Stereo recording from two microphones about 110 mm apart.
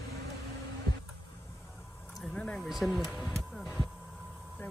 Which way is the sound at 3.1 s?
Centre (ahead or behind).